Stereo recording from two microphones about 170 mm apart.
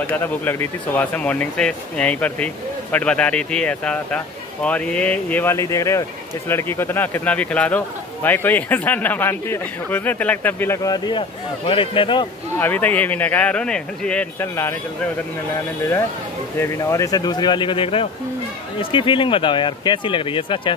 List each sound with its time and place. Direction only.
0.1 s speech: 10° left (ahead or behind); by 12.3 s 30° left (ahead or behind)
12.5 s speech: 10° left (ahead or behind)
16.5 s speech: 20° left (ahead or behind)